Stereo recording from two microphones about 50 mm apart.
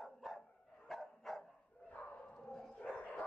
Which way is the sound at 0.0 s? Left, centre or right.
Centre.